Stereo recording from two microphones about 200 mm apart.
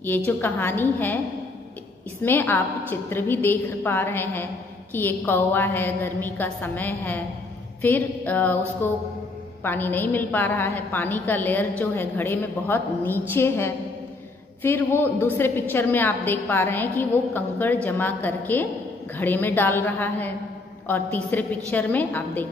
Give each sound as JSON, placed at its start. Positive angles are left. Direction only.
{"t": 0.4, "sound": "a woman's voice", "side_deg": 10}
{"t": 2.2, "sound": "a woman's voice", "side_deg": 10}